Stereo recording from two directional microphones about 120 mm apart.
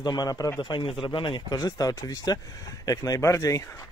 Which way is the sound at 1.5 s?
30° left (ahead or behind).